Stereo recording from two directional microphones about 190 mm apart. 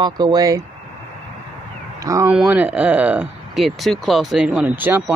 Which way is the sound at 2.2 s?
5° right (ahead or behind).